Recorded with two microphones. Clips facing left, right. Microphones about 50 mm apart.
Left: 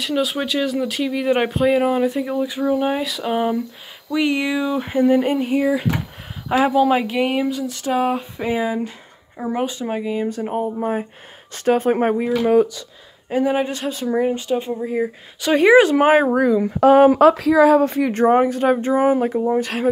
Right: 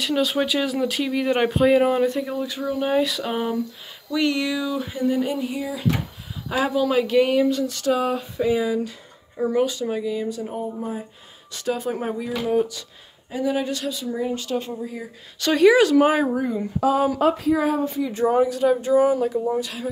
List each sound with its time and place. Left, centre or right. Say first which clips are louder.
0.0 s speech: even; centre
4.1 s a sound: left 3 dB; left
6.5 s speech: left 5 dB; left; by 7.8 s centre
7.8 s a sound: left 4 dB; left
11.5 s speech: left 8 dB; left
13.3 s a sound: left 5 dB; left
14.3 s speech: left 4 dB; left
14.8 s a sound: left 10 dB; left
15.5 s speech: left 3 dB; left
16.3 s speech: left 7 dB; left
16.9 s speech: left 11 dB; left
17.2 s speech: left 7 dB; left